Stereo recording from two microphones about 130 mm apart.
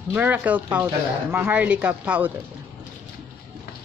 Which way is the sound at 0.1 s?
15° right (ahead or behind).